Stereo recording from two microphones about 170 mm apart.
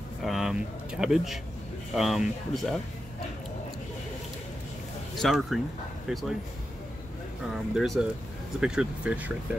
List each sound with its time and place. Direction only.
0.2 s speech: centre (ahead or behind)
5.1 s speech: centre (ahead or behind)
7.7 s speech: centre (ahead or behind)